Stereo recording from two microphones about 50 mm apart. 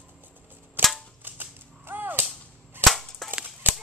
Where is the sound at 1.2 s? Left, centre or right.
Right.